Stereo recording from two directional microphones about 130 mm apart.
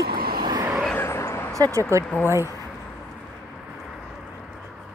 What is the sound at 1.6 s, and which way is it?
Speech, 25° right (ahead or behind).